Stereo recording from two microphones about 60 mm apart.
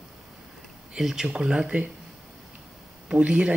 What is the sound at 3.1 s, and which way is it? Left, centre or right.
Speech, centre.